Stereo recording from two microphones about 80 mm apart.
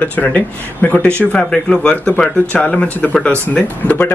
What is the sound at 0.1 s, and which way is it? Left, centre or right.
Speech, centre.